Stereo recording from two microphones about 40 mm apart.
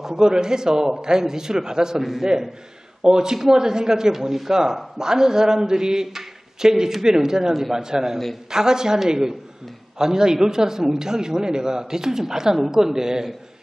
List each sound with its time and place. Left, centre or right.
0.0 s speech: centre